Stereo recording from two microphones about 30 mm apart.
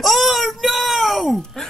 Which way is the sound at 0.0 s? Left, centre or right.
Centre.